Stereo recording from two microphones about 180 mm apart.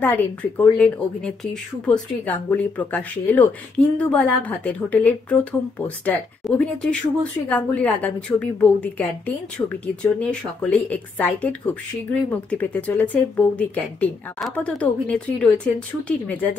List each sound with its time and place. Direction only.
0.0 s speech: 10° left (ahead or behind)